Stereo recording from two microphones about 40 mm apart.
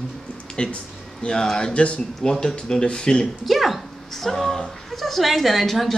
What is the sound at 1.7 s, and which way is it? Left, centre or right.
Speech, left.